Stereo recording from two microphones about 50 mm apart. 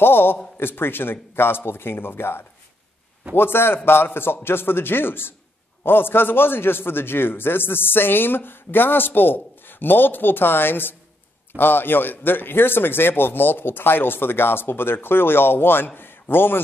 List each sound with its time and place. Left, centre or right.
0.0 s a man's voice: left